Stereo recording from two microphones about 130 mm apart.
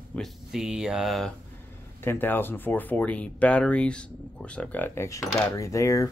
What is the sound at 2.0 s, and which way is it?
Speech, 15° left (ahead or behind).